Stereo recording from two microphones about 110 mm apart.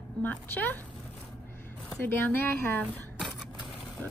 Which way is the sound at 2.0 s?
20° left (ahead or behind).